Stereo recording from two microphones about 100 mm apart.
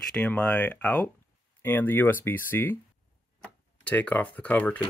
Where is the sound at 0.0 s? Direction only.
10° left (ahead or behind).